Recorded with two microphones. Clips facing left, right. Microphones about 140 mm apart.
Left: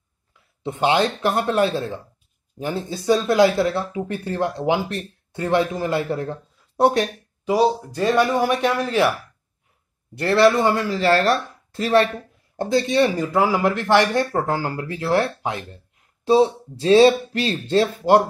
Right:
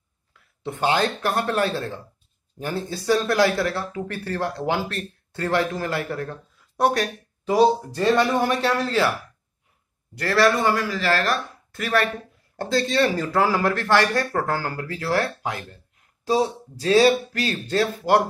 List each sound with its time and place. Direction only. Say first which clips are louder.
0.3 s speech: left 2 dB; 20° left (ahead or behind)
7.4 s speech: right 1 dB; 10° left (ahead or behind)
10.1 s speech: left 4 dB; 25° left (ahead or behind)